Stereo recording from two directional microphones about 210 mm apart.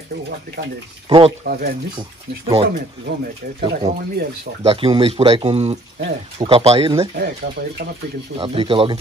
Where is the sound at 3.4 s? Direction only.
45° right (ahead or behind).